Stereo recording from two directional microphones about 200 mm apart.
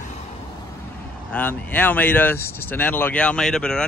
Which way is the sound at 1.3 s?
10° left (ahead or behind).